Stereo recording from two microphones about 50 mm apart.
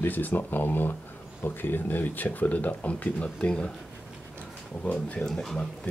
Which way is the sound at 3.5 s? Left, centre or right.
Centre.